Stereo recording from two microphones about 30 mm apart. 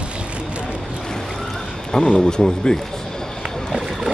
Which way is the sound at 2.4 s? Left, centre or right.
Centre.